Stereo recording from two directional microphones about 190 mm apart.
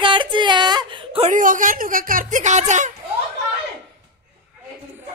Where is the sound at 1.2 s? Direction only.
45° right (ahead or behind).